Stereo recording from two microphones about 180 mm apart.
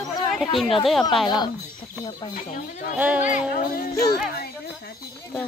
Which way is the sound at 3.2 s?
50° left (ahead or behind).